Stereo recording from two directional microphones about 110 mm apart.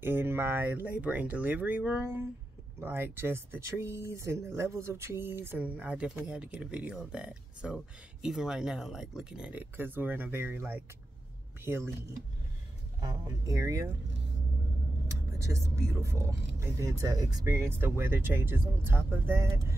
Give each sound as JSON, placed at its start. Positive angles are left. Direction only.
{"t": 0.0, "sound": "speech", "side_deg": -20}
{"t": 13.0, "sound": "speech", "side_deg": -35}
{"t": 15.4, "sound": "speech", "side_deg": -25}